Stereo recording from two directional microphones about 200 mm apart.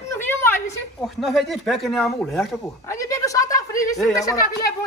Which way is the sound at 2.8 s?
15° left (ahead or behind).